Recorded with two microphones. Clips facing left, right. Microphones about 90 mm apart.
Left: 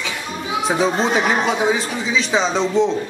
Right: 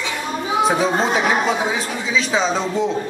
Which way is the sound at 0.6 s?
Centre (ahead or behind).